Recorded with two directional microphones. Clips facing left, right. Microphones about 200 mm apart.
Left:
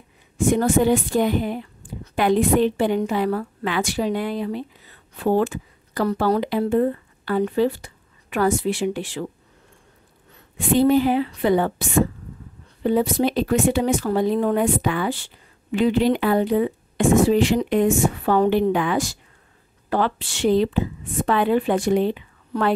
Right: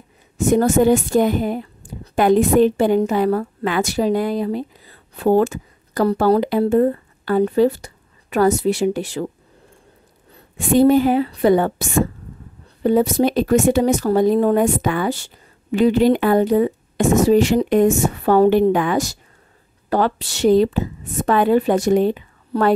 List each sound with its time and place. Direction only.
0.4 s a woman's voice: 40° right (ahead or behind)
10.3 s a woman's voice: 45° right (ahead or behind)